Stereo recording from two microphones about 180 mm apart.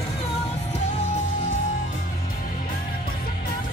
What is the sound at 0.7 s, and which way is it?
Music, 35° left (ahead or behind).